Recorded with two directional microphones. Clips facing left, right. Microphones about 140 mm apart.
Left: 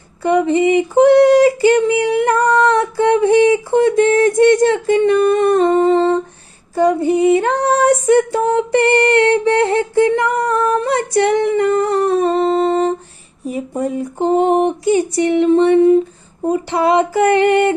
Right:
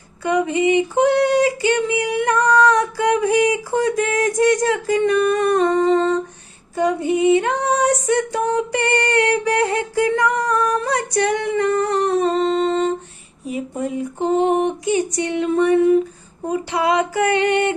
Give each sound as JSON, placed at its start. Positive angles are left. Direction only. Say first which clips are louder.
{"t": 0.2, "sound": "female singing", "louder": "left 5 dB", "side_deg": 35}
{"t": 10.4, "sound": "humming", "louder": "left 4 dB", "side_deg": 25}
{"t": 13.5, "sound": "a sound", "louder": "left 4 dB", "side_deg": 35}
{"t": 16.4, "sound": "female singing", "louder": "left 4 dB", "side_deg": 30}